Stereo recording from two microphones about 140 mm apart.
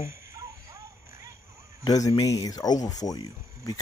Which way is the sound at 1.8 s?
25° left (ahead or behind).